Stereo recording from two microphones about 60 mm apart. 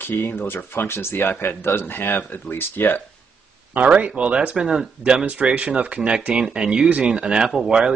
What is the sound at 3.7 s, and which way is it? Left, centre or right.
Speech, right.